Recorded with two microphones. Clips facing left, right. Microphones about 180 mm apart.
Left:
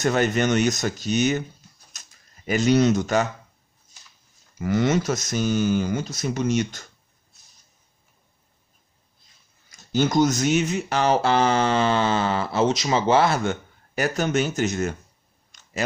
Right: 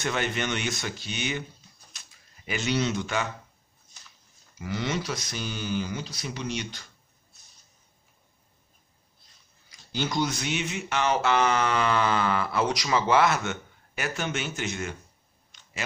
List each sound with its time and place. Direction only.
0.0 s speech: 40° left (ahead or behind)
1.9 s a sound: 45° left (ahead or behind)
4.6 s speech: 50° left (ahead or behind)
9.7 s speech: 45° left (ahead or behind)
15.5 s clicking: 45° left (ahead or behind)